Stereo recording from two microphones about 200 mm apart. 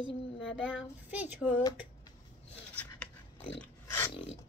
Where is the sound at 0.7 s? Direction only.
5° right (ahead or behind).